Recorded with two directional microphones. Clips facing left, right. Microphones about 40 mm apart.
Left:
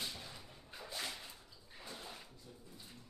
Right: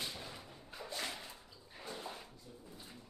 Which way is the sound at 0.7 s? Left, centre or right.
Centre.